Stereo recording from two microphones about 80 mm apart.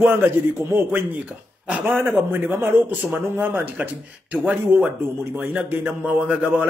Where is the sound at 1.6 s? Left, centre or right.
Centre.